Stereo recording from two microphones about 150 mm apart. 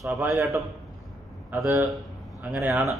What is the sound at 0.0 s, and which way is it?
A man's voice, 10° right (ahead or behind).